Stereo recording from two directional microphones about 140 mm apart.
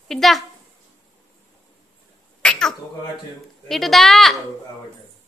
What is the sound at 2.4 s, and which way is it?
Cat, 5° left (ahead or behind).